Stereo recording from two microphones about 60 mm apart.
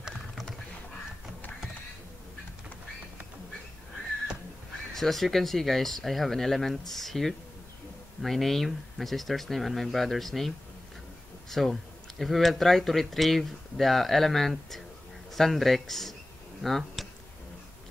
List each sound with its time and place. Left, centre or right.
4.9 s speech: centre
11.5 s speech: centre